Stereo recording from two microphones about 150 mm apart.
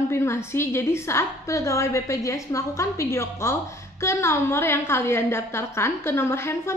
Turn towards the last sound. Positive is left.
turn(degrees=15)  # may be behind; listen again after turning